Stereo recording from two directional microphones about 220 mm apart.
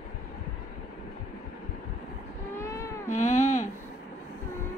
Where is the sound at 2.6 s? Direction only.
15° left (ahead or behind).